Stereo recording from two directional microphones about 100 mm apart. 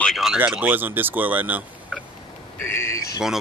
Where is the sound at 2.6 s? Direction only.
25° left (ahead or behind).